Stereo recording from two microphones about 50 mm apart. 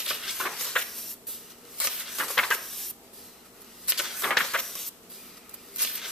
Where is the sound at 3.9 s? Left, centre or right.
Centre.